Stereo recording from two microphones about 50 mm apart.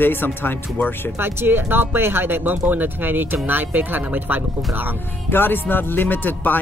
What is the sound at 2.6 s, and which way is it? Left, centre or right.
Speech, right.